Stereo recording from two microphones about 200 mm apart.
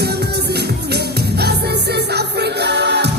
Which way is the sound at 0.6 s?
55° right (ahead or behind).